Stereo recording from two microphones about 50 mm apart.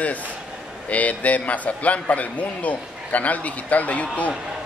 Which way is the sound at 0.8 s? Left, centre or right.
Left.